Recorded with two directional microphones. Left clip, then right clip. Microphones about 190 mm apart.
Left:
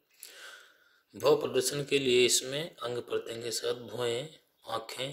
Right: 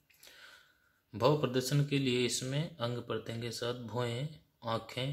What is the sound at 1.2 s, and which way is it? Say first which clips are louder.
Speech: left 4 dB; 25° left (ahead or behind).